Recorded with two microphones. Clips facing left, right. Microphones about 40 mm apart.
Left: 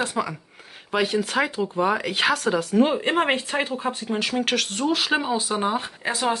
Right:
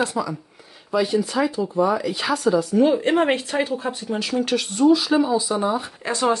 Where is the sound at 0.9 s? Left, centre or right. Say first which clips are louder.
Right 2 dB; left.